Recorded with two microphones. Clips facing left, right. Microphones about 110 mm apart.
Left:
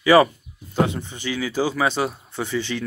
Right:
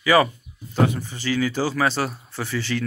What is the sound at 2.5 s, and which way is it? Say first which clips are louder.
Speech: even; 20° left (ahead or behind).